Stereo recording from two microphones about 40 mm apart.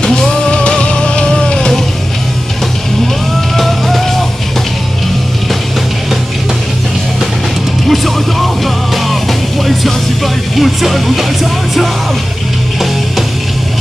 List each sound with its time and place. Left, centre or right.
0.3 s music: left
3.5 s music: centre
7.9 s music: centre